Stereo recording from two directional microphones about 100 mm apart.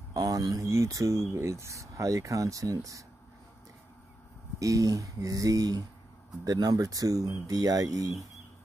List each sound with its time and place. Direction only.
0.1 s speech: 40° right (ahead or behind)
4.6 s speech: 35° right (ahead or behind)